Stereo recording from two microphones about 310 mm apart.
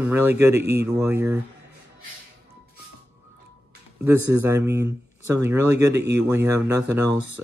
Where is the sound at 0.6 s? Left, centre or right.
Right.